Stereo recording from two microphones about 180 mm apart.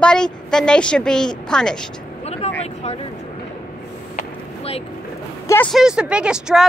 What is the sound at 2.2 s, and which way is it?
Vehicle, 35° left (ahead or behind).